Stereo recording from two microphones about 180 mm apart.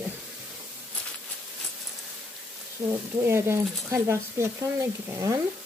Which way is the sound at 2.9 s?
15° right (ahead or behind).